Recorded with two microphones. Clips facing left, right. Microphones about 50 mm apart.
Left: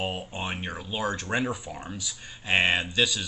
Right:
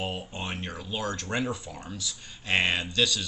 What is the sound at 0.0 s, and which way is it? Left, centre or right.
Speech, centre.